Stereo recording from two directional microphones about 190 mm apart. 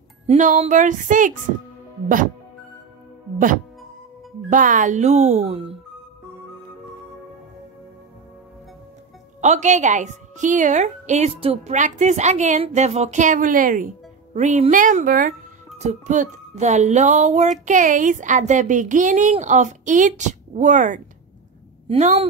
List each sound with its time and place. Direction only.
0.3 s music: 40° right (ahead or behind)
4.5 s music: 40° right (ahead or behind)
9.4 s music: 40° right (ahead or behind)